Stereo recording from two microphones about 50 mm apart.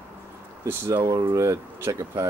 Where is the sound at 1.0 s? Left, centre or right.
Right.